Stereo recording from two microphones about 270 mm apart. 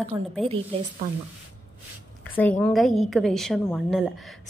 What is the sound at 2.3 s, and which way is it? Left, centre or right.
Speech, centre.